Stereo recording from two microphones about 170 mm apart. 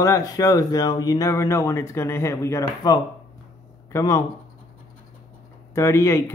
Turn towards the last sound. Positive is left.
turn(degrees=15)  # may be behind; listen again after turning